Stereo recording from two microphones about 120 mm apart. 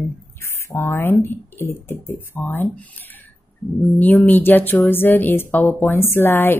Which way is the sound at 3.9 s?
15° left (ahead or behind).